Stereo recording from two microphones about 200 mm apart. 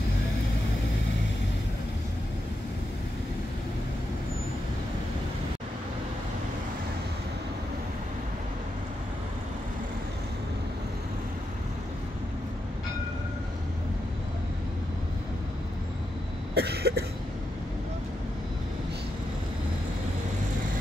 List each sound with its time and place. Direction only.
16.5 s cough: 55° right (ahead or behind)